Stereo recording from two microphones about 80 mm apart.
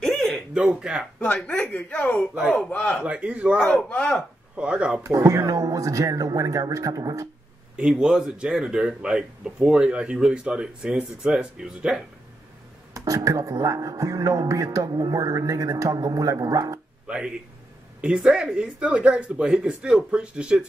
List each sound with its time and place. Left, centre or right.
0.6 s speech: centre
1.2 s a man's voice: left
3.0 s speech: centre
3.6 s a man's voice: centre
4.6 s speech: centre
5.0 s speech: right
7.7 s speech: centre
12.9 s speech: right
17.0 s speech: centre